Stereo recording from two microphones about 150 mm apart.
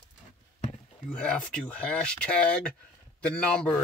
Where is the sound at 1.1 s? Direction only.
5° left (ahead or behind).